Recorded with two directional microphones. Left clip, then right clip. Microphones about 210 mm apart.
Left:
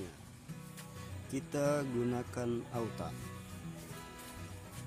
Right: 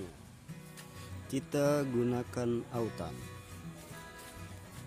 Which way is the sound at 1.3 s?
20° right (ahead or behind).